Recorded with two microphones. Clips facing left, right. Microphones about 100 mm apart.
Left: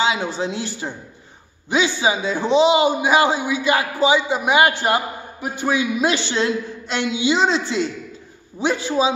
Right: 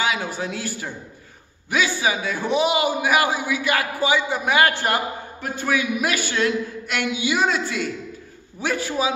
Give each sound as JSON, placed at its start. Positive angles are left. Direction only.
{"t": 0.0, "sound": "a man's voice", "side_deg": 25}